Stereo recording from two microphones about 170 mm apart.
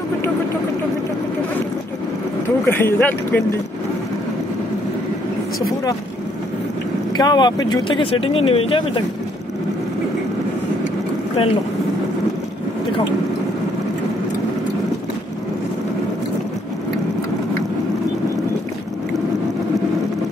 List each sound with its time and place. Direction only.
2.6 s speech: 15° left (ahead or behind)
7.2 s speech: 25° left (ahead or behind)